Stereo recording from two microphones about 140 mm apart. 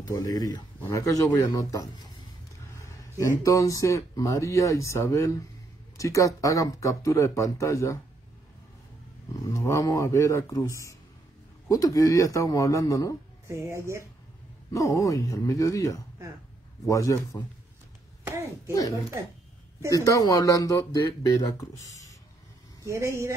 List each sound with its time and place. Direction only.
0.0 s speech: 25° left (ahead or behind)
9.3 s speech: 25° left (ahead or behind)
13.5 s speech: 20° right (ahead or behind)
14.7 s speech: 20° left (ahead or behind)
18.2 s a sound: 20° right (ahead or behind)
18.7 s speech: 25° left (ahead or behind)
22.8 s speech: 20° right (ahead or behind)